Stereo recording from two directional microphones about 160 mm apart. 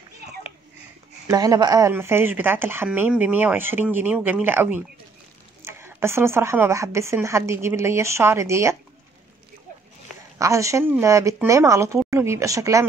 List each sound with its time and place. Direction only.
1.2 s speech: 20° right (ahead or behind)
10.4 s speech: 20° right (ahead or behind)